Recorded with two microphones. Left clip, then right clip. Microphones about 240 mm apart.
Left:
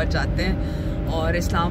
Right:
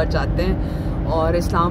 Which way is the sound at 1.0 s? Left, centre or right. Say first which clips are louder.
Right 6 dB; centre.